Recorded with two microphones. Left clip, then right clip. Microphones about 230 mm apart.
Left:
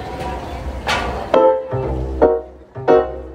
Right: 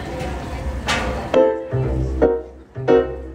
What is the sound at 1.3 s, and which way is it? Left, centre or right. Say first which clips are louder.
Music: left 3 dB; left.